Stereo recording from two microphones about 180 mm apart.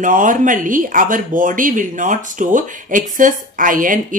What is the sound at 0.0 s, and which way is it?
Speech, 45° right (ahead or behind).